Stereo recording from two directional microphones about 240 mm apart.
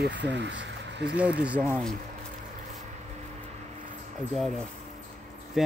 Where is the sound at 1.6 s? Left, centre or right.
Centre.